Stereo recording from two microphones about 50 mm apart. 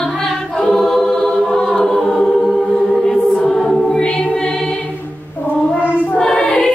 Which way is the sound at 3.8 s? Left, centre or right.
Centre.